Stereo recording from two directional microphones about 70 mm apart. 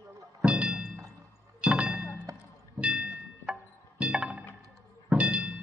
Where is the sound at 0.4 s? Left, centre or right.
Centre.